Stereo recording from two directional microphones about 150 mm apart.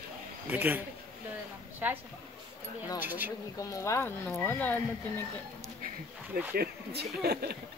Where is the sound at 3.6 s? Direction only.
20° left (ahead or behind).